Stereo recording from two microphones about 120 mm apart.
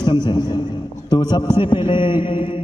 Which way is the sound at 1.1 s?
40° left (ahead or behind).